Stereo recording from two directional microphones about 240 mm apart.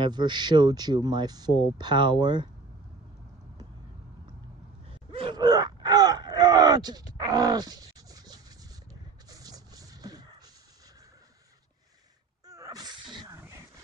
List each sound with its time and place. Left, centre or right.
0.0 s speech: centre
4.8 s gasp: right
9.4 s music: centre
12.4 s sneeze: centre